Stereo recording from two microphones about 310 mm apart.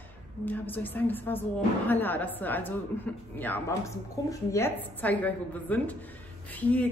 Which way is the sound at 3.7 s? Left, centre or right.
Centre.